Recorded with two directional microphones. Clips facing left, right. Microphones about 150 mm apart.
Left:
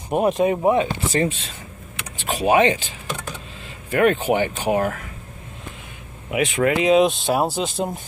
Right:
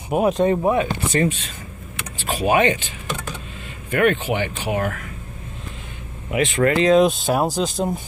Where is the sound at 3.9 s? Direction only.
35° left (ahead or behind).